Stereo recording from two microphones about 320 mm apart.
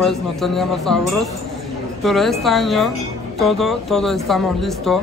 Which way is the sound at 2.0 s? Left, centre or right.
Centre.